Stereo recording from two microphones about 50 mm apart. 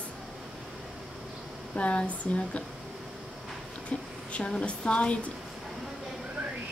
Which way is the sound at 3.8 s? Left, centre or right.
Left.